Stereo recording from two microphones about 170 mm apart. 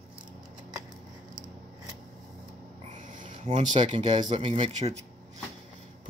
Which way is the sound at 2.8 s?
50° right (ahead or behind).